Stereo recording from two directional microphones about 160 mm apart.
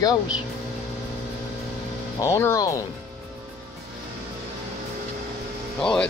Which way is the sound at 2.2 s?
20° left (ahead or behind).